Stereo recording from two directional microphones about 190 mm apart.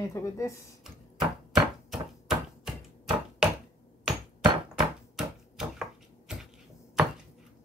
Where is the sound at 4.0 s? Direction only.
5° right (ahead or behind).